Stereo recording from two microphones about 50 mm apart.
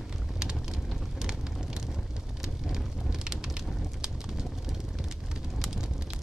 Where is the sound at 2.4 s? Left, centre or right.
Centre.